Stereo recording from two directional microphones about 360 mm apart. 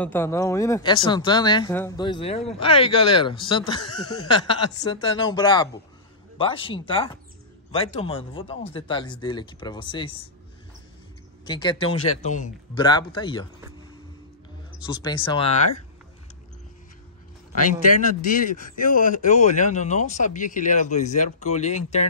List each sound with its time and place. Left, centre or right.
0.0 s speech: centre
11.4 s speech: centre
14.8 s speech: centre
18.3 s speech: left